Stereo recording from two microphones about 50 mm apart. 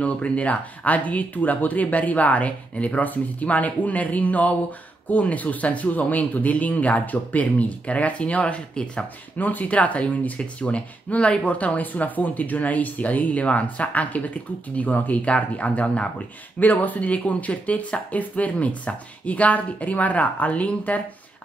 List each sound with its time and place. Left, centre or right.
0.0 s speech: left
9.4 s speech: left